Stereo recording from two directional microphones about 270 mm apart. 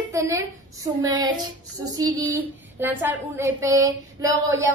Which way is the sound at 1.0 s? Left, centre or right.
Centre.